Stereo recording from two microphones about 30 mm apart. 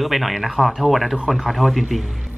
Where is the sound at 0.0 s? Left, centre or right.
Centre.